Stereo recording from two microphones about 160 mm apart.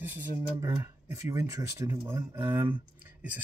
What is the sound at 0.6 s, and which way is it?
Speech, 25° right (ahead or behind).